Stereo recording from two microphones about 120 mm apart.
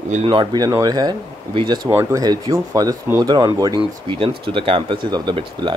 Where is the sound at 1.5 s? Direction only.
45° right (ahead or behind).